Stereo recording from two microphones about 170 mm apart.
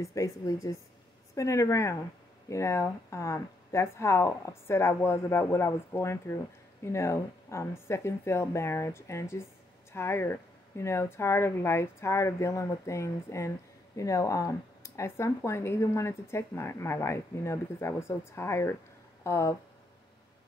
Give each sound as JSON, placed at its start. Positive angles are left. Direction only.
{"t": 0.0, "sound": "a woman's voice", "side_deg": 20}